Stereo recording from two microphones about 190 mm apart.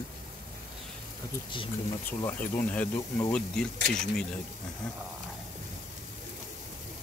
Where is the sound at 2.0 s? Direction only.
10° left (ahead or behind).